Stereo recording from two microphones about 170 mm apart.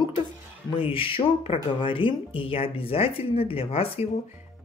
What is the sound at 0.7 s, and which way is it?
Speech, 30° left (ahead or behind).